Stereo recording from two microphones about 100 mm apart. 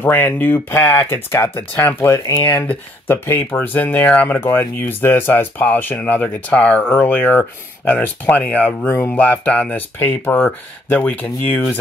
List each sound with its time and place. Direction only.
0.0 s speech: 20° left (ahead or behind)